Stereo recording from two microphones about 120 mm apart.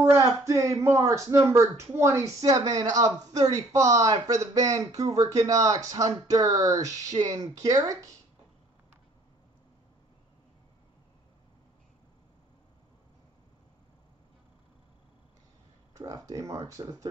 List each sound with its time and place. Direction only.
0.0 s speech: 25° right (ahead or behind)
15.9 s speech: 30° right (ahead or behind)